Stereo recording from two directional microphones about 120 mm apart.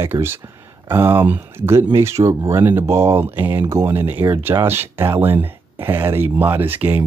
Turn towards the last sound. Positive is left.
turn(degrees=-15)  # may be behind; listen again after turning